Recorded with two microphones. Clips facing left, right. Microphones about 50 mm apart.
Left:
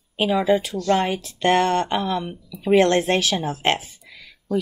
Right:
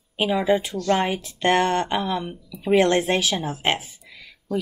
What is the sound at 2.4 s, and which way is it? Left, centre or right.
Speech, centre.